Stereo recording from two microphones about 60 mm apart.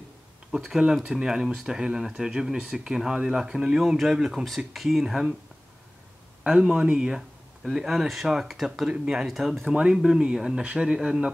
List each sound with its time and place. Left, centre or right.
0.5 s speech: centre
6.4 s speech: centre